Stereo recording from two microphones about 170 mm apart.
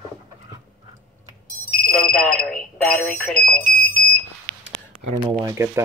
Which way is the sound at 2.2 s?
5° left (ahead or behind).